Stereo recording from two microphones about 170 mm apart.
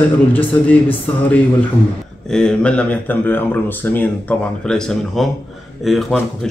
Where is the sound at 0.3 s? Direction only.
10° left (ahead or behind).